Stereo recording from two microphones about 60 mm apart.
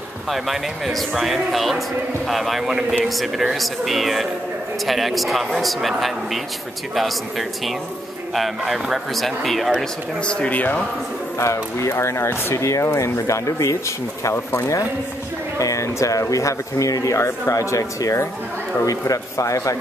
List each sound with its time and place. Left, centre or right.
0.3 s a man's voice: centre
10.2 s speech: centre
10.5 s a man's voice: left
11.3 s speech: left
14.3 s speech: left
15.6 s speech: left